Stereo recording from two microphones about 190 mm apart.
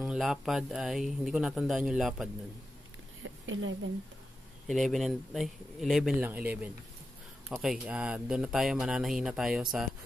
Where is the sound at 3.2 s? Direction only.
90° right.